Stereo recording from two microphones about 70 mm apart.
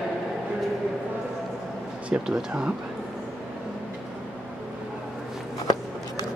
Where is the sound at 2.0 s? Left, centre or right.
Centre.